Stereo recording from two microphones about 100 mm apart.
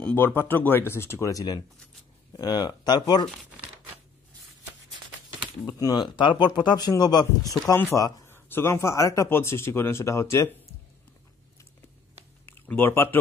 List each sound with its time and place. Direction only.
0.0 s speech: 20° left (ahead or behind)
1.3 s speech: 45° left (ahead or behind)
5.7 s speech: 45° left (ahead or behind)
7.7 s speech: 25° left (ahead or behind)
12.4 s speech: 20° left (ahead or behind)